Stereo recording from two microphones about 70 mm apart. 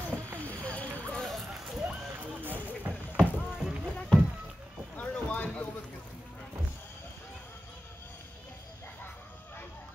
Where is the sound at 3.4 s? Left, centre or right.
Centre.